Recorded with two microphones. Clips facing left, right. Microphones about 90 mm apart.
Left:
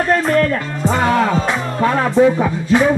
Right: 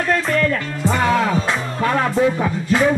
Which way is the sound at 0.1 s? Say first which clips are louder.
Left 4 dB; 40° left (ahead or behind).